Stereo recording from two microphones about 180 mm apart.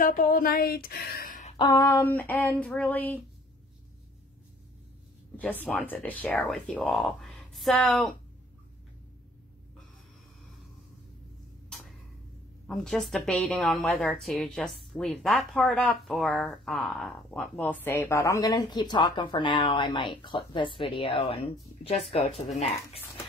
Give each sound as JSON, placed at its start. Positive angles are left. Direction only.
{"t": 0.0, "sound": "a woman's voice", "side_deg": 50}
{"t": 1.6, "sound": "a woman's voice", "side_deg": 20}
{"t": 5.4, "sound": "speech", "side_deg": 10}
{"t": 12.6, "sound": "a woman's voice", "side_deg": 0}